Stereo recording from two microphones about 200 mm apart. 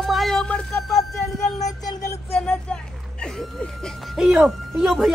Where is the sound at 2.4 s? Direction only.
5° left (ahead or behind).